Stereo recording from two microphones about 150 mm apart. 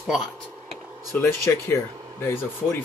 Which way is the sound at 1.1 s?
15° left (ahead or behind).